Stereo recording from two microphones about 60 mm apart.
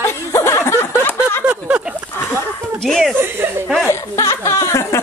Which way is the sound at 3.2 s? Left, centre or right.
Right.